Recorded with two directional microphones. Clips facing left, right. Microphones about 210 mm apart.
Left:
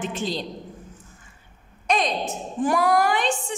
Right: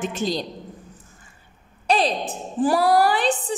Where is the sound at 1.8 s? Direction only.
35° right (ahead or behind).